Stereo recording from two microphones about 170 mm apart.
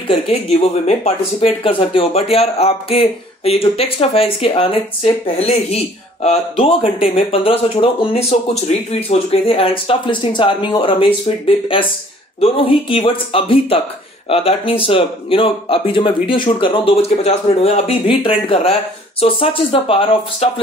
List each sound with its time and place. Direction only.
0.1 s speech: 35° left (ahead or behind)
12.9 s speech: 30° left (ahead or behind)